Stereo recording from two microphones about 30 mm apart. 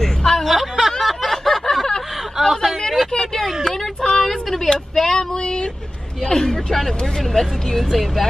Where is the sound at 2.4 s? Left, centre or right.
Centre.